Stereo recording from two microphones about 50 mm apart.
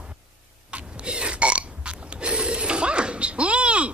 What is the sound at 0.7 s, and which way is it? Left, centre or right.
Burping, right.